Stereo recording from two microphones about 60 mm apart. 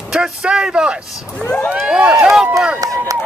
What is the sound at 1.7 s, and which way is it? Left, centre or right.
Run, centre.